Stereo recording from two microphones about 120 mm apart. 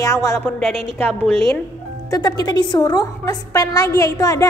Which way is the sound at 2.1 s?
35° left (ahead or behind).